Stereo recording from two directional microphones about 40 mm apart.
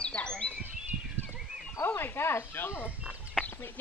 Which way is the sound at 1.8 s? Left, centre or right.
Left.